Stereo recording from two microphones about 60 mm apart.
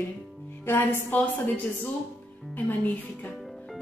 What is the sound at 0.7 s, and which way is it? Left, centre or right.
A woman's voice, left.